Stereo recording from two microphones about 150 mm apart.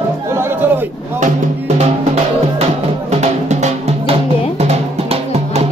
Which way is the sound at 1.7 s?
45° right (ahead or behind).